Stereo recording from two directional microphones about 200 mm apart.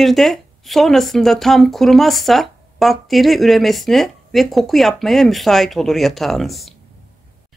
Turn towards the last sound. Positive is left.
turn(degrees=0)  # may be behind; listen again after turning